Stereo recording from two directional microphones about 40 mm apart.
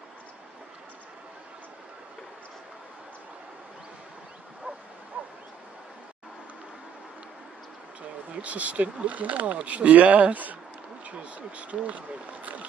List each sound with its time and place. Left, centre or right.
5.1 s bow-wow: right
8.4 s speech: right